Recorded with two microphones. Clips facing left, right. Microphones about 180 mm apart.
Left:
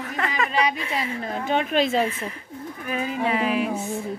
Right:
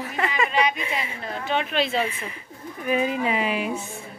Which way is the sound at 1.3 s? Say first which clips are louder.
Left 2 dB; 45° left (ahead or behind).